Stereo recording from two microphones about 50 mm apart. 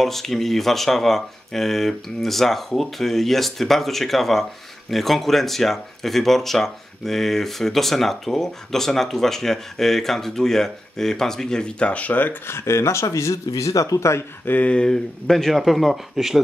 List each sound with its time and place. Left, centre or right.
0.0 s speech: centre; by 12.4 s left
12.4 s speech: left
14.4 s speech: left
14.7 s speech: centre